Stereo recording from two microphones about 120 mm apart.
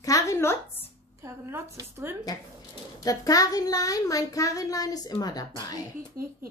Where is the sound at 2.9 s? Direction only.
30° left (ahead or behind).